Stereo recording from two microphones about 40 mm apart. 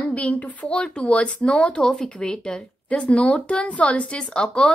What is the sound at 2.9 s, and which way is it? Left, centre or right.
Speech, left.